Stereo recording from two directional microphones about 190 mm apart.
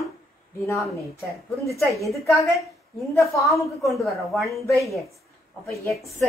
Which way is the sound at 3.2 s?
Centre (ahead or behind).